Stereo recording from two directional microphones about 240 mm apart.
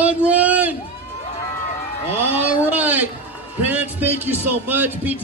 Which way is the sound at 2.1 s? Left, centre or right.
Centre.